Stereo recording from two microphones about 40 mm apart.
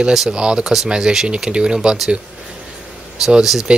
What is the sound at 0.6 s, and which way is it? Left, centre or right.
Speech, centre.